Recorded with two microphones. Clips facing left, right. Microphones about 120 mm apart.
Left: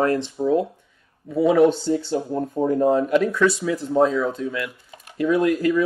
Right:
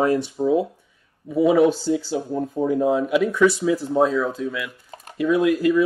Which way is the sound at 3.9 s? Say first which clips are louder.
Left 4 dB; centre (ahead or behind).